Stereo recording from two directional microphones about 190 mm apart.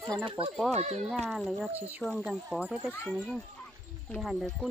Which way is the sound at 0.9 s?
Centre (ahead or behind).